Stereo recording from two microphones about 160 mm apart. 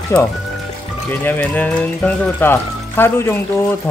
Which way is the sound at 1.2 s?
10° left (ahead or behind).